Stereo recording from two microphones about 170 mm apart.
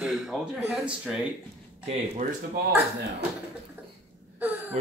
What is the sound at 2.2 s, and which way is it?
Speech, 50° right (ahead or behind).